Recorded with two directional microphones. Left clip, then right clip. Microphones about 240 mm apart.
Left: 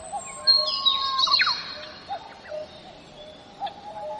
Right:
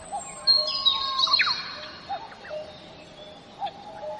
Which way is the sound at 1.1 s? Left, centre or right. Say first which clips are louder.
Left 1 dB; left.